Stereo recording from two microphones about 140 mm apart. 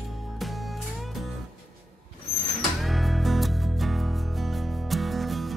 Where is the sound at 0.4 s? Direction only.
Centre (ahead or behind).